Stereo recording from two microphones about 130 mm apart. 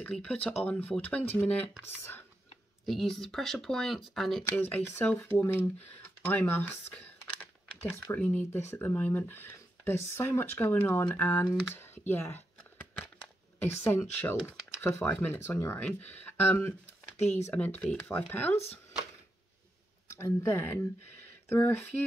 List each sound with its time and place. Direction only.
0.0 s speech: 10° left (ahead or behind)
2.8 s speech: centre (ahead or behind)
4.5 s speech: 15° left (ahead or behind)
11.8 s a sound: 15° left (ahead or behind)
13.7 s speech: 20° left (ahead or behind)
20.2 s speech: 20° left (ahead or behind)